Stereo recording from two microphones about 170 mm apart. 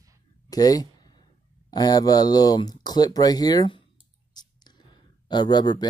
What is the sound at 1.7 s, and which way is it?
Speech, 25° left (ahead or behind).